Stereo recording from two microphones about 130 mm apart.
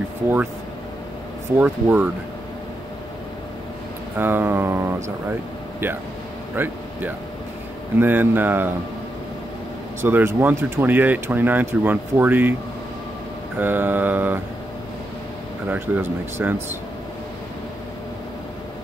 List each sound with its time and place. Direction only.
1.6 s speech: 10° right (ahead or behind)
4.2 s speech: 15° right (ahead or behind)
6.5 s speech: 15° right (ahead or behind)
10.0 s speech: 15° right (ahead or behind)
13.6 s speech: 15° right (ahead or behind)
15.7 s speech: 15° right (ahead or behind)